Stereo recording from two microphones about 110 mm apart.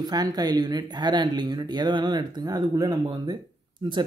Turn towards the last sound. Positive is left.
turn(degrees=-40)  # may be behind; listen again after turning